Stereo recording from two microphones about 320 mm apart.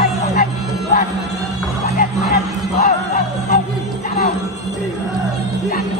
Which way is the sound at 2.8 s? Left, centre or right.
Left.